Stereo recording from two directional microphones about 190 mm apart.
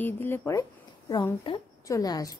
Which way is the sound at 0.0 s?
10° left (ahead or behind).